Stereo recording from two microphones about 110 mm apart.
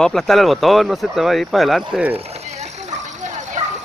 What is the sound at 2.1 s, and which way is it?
Dog, 70° right (ahead or behind).